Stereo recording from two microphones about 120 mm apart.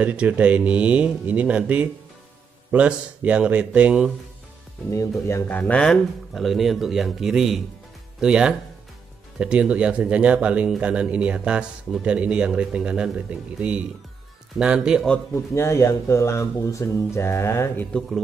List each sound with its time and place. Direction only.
0.0 s speech: 10° right (ahead or behind)
5.2 s speech: 20° left (ahead or behind); by 15.0 s 5° right (ahead or behind)
15.3 s speech: 20° left (ahead or behind)